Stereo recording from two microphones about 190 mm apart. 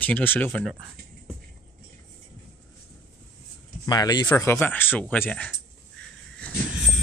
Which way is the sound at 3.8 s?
20° left (ahead or behind).